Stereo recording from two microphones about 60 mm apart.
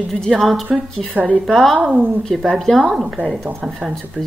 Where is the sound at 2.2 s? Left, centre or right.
Centre.